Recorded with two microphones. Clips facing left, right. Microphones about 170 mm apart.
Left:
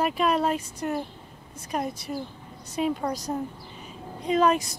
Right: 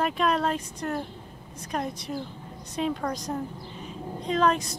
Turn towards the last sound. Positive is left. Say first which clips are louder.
# left 2 dB
turn(degrees=10)  # may be behind; listen again after turning